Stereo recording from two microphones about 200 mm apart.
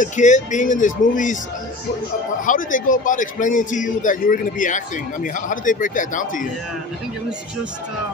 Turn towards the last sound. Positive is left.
turn(degrees=40)  # may be behind; listen again after turning